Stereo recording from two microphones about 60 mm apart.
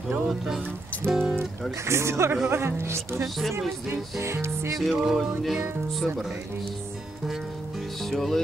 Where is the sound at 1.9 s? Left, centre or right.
Right.